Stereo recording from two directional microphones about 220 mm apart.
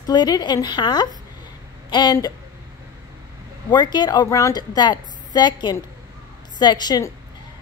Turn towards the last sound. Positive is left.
turn(degrees=15)  # may be behind; listen again after turning